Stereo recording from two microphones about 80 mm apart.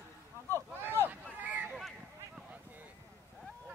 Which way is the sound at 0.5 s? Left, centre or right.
Left.